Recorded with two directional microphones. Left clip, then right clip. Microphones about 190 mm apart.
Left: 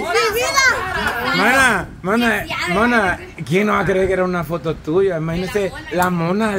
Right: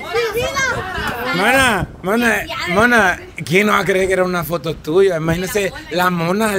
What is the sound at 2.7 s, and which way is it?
A man's voice, 35° right (ahead or behind).